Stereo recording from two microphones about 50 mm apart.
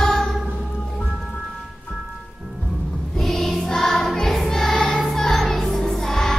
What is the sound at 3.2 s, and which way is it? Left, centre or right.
Choir, centre.